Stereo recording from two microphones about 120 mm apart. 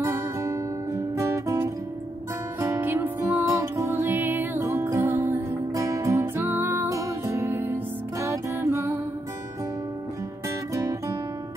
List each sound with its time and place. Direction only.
0.0 s music: 25° right (ahead or behind)
10.7 s music: 30° right (ahead or behind)